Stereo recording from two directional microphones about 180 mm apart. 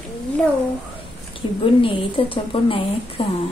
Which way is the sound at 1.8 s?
30° left (ahead or behind).